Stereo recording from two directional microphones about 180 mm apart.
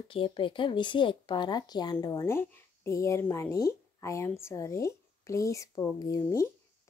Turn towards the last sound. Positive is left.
turn(degrees=20)  # may be behind; listen again after turning